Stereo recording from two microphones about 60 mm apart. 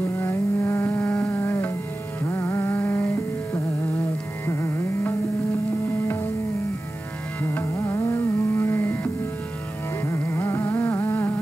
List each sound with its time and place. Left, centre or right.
0.2 s vehicle: left
1.1 s a sound: left
2.2 s music: left
4.5 s music: left
7.4 s carnatic music: left
10.0 s music: left